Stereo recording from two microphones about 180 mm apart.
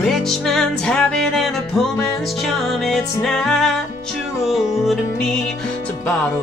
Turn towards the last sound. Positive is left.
turn(degrees=0)  # may be behind; listen again after turning